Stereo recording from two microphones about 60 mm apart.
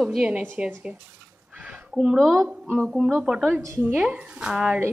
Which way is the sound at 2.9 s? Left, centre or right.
Centre.